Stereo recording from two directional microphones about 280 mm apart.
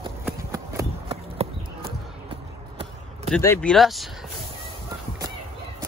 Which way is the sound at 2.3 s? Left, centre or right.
Centre.